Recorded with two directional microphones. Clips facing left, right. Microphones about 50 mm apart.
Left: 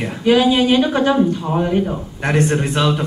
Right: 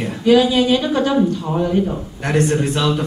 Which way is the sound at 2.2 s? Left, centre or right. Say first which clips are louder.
Even; left.